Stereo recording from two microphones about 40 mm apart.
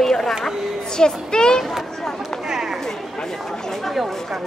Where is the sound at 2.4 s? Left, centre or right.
Centre.